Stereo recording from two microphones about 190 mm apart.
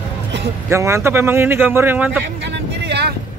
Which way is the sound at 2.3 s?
65° right (ahead or behind).